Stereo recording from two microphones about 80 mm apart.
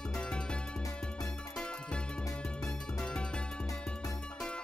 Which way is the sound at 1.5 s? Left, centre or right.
Centre.